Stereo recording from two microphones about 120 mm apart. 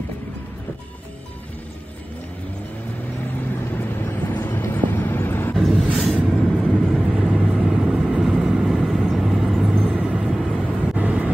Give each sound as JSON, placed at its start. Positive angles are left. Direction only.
{"t": 3.7, "sound": "vehicle", "side_deg": 15}
{"t": 5.6, "sound": "a sound", "side_deg": 0}
{"t": 5.9, "sound": "vehicle", "side_deg": -5}